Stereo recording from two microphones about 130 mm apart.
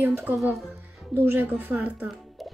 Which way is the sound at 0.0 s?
15° right (ahead or behind).